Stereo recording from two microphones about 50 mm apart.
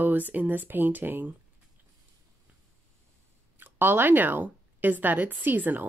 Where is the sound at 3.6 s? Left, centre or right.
Right.